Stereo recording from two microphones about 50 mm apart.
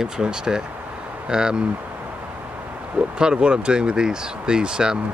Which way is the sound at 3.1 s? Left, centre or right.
Centre.